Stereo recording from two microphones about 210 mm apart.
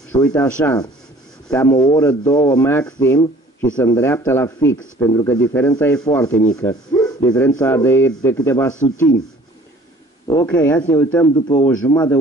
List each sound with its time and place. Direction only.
0.1 s speech: 10° left (ahead or behind)
10.4 s speech: 10° left (ahead or behind)